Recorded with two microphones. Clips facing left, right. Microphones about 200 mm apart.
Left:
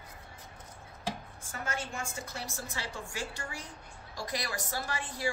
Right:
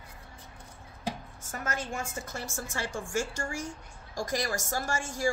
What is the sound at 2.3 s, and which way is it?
A woman's voice, 45° right (ahead or behind).